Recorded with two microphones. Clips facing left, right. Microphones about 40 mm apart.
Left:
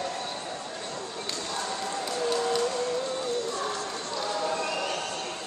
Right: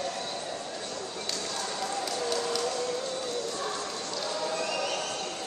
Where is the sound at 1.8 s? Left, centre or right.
Left.